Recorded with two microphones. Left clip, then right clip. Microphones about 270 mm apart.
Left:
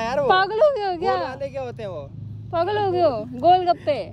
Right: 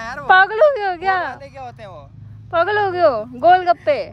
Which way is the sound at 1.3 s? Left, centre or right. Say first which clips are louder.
Left 4 dB; centre.